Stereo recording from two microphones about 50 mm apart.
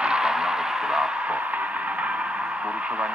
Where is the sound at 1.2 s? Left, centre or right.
Right.